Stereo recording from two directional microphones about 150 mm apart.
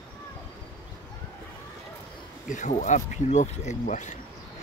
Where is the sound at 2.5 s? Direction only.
55° left (ahead or behind).